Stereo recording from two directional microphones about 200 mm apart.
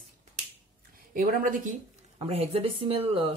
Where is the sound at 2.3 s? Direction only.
30° right (ahead or behind).